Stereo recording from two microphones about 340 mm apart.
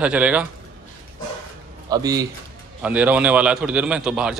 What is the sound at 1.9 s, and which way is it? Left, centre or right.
A man's voice, centre.